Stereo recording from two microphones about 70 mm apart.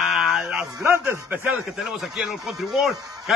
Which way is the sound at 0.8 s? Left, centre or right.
Right.